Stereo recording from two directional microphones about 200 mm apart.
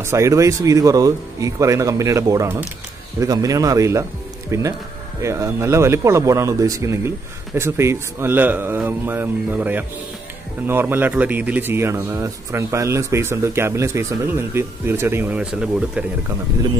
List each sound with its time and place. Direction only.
0.0 s a man's voice: 15° right (ahead or behind)